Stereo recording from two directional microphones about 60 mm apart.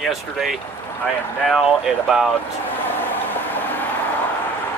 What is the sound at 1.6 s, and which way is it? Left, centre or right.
Speech, centre.